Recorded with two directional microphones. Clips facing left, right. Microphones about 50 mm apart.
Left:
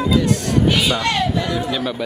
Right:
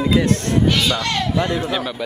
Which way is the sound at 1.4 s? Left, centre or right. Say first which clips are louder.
Even; right.